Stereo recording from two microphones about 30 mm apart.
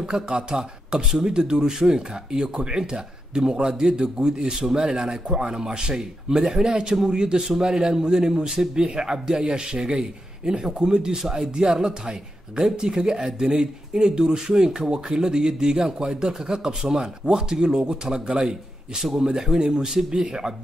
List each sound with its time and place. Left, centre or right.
0.1 s speech: right
4.6 s speech: centre; by 5.9 s right
6.3 s speech: centre
7.5 s speech: centre
7.8 s speech: right